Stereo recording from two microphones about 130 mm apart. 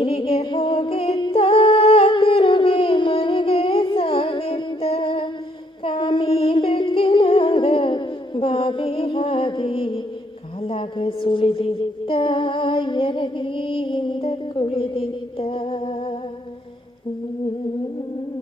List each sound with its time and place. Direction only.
0.0 s music: 45° left (ahead or behind)
5.9 s singing: 40° left (ahead or behind)
10.6 s a sound: 45° left (ahead or behind)